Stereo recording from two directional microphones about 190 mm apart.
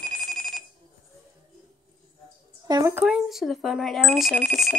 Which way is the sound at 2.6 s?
20° right (ahead or behind).